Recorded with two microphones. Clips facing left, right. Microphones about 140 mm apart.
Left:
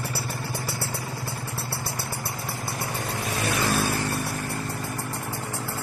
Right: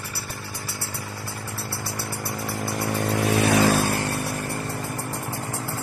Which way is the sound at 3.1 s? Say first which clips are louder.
Right 8 dB; 65° right (ahead or behind).